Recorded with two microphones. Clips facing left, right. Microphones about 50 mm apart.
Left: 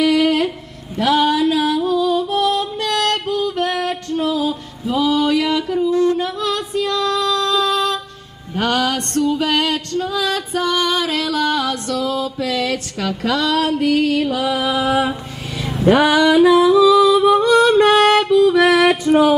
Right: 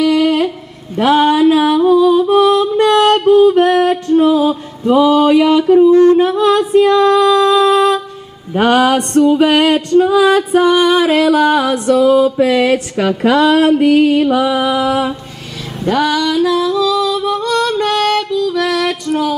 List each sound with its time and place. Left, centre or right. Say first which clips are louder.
0.0 s a sound: right 3 dB; centre
0.9 s music: right 5 dB; right
5.0 s singing: right 6 dB; right
8.5 s music: right 8 dB; right
14.8 s a sound: right 2 dB; centre
15.8 s singing: left 2 dB; centre